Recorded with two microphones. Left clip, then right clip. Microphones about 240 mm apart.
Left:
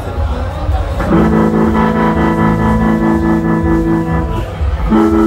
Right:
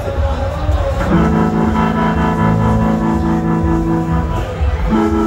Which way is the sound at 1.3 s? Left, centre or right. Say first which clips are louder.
Left 3 dB; centre.